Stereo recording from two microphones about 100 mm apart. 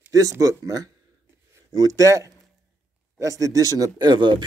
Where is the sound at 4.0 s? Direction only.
50° right (ahead or behind).